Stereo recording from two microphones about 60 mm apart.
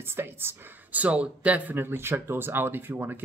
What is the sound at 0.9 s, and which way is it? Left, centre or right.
Speech, right.